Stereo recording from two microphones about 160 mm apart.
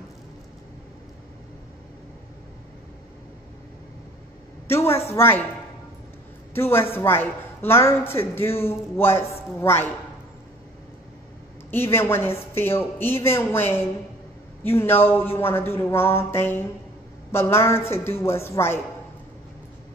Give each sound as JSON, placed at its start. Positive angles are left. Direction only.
{"t": 4.6, "sound": "speech", "side_deg": 15}
{"t": 6.5, "sound": "speech", "side_deg": 15}
{"t": 11.7, "sound": "speech", "side_deg": 15}